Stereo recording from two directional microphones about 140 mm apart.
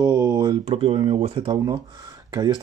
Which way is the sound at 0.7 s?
45° right (ahead or behind).